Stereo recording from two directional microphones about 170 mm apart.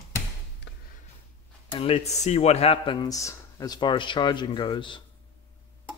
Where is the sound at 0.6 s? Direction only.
90° left.